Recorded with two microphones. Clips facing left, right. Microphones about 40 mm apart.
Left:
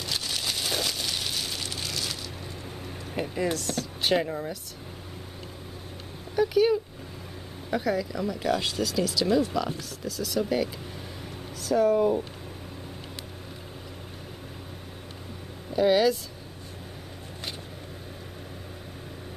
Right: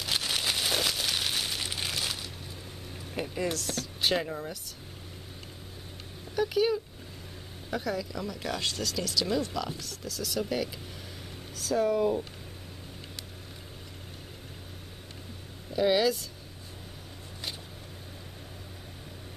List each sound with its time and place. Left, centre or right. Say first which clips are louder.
0.1 s a sound: right 2 dB; right
3.2 s speech: left 3 dB; centre
6.3 s speech: left 4 dB; centre
7.7 s speech: left 5 dB; centre
15.7 s speech: left 3 dB; centre